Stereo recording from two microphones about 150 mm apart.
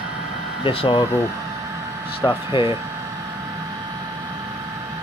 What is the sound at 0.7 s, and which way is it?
Speech, 35° left (ahead or behind).